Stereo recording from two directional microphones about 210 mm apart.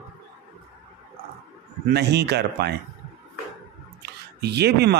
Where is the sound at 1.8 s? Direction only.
50° right (ahead or behind).